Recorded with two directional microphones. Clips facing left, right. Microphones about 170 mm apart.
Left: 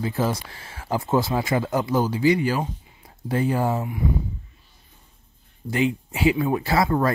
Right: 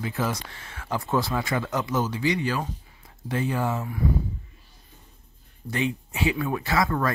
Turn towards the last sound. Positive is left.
turn(degrees=30)  # may be behind; listen again after turning